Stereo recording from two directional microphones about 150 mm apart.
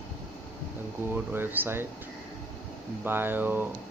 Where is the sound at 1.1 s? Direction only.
15° right (ahead or behind).